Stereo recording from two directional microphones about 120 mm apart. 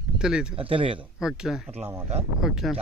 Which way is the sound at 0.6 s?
50° right (ahead or behind).